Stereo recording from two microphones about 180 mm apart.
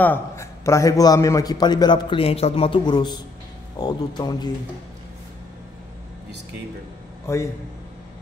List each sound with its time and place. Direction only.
0.0 s a man's voice: 15° left (ahead or behind)
7.3 s a man's voice: 15° left (ahead or behind)